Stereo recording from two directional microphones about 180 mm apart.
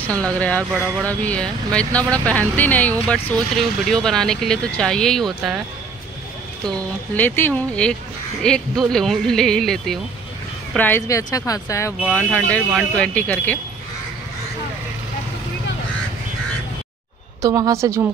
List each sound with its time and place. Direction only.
0.0 s speech: 5° left (ahead or behind)
7.2 s speech: 10° left (ahead or behind)
10.8 s speech: 10° left (ahead or behind)
17.4 s a woman's voice: 20° right (ahead or behind)